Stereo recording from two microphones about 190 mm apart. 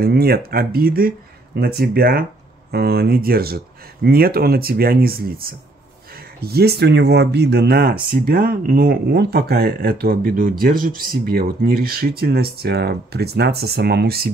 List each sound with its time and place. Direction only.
0.0 s speech: 55° right (ahead or behind)